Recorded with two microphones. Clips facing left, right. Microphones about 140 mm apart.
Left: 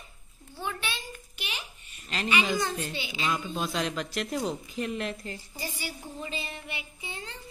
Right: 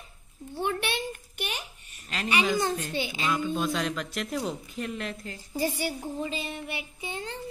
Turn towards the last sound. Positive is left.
turn(degrees=-40)  # may be behind; listen again after turning